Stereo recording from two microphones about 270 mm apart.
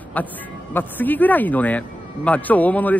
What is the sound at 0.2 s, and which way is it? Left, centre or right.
Speech, centre.